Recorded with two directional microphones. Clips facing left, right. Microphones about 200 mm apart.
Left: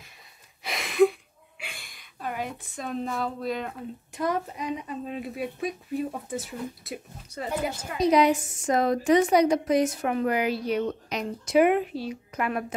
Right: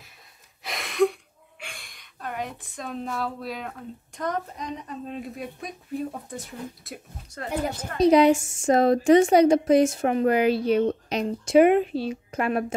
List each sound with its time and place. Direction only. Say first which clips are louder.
0.7 s a sound: left 2 dB; centre (ahead or behind)
1.6 s a woman's voice: even; centre (ahead or behind)
8.0 s a woman's voice: right 4 dB; 30° right (ahead or behind)